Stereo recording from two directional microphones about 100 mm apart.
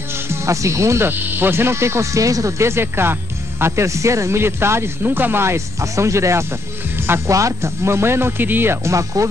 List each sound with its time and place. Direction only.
0.3 s speech: 30° right (ahead or behind)